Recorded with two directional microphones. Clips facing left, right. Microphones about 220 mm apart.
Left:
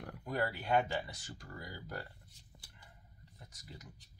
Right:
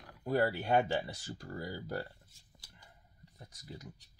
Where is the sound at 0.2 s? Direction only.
35° right (ahead or behind).